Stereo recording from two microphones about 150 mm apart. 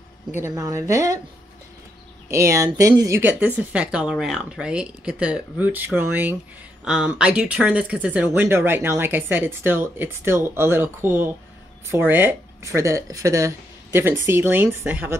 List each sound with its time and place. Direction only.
0.5 s a woman's voice: 25° right (ahead or behind)
2.2 s speech: 20° right (ahead or behind)